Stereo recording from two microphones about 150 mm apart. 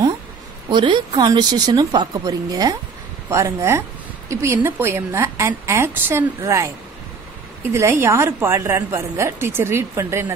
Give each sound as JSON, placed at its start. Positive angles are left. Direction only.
{"t": 0.7, "sound": "a woman's voice", "side_deg": -30}
{"t": 7.7, "sound": "a woman's voice", "side_deg": -15}